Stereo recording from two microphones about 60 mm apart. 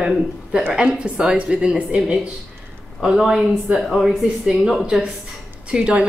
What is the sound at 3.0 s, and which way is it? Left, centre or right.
A woman's voice, centre.